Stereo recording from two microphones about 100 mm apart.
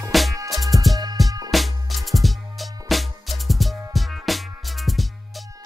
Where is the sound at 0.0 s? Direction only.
Centre (ahead or behind).